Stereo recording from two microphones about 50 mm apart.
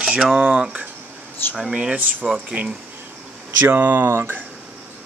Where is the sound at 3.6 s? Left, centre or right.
Right.